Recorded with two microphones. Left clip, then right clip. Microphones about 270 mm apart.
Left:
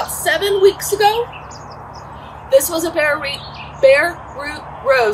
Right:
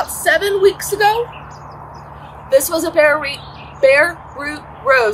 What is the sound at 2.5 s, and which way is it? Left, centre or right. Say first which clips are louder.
A woman's voice: even; centre.